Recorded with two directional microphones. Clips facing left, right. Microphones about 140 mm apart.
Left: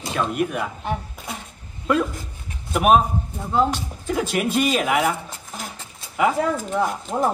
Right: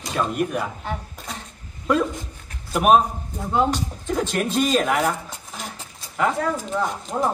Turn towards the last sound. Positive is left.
turn(degrees=5)  # may be behind; listen again after turning